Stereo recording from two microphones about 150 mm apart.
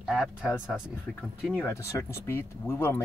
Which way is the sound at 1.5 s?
20° left (ahead or behind).